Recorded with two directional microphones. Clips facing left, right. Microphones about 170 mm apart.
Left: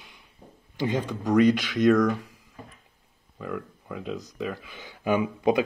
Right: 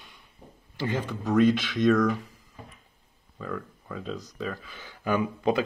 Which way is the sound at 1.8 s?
Centre (ahead or behind).